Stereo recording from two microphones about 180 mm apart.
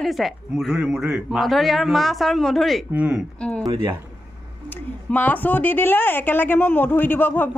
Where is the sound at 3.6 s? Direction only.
25° right (ahead or behind).